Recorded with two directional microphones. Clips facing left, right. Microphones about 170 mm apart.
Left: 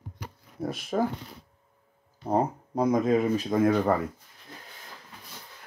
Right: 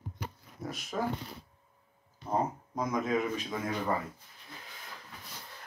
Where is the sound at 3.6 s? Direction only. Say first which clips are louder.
Left 10 dB; 55° left (ahead or behind).